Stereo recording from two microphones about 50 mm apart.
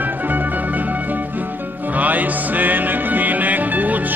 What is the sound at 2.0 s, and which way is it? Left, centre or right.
Music, right.